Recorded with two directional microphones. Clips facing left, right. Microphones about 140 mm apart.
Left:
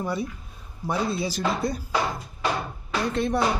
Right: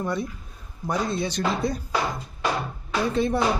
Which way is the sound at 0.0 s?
5° left (ahead or behind).